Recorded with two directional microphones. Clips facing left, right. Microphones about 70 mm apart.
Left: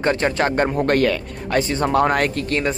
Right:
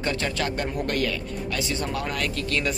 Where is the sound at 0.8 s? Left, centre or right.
Left.